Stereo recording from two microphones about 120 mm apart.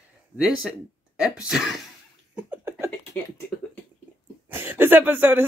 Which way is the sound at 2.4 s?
20° right (ahead or behind).